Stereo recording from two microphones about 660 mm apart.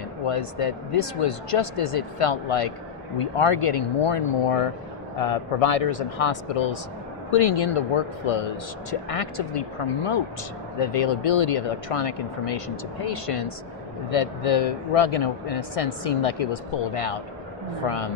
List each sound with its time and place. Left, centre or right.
0.3 s speech: left